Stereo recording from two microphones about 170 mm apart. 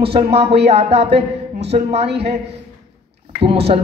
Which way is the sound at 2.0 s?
80° right.